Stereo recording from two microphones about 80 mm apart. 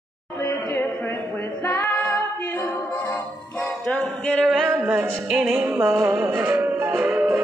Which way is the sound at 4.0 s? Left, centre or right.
Centre.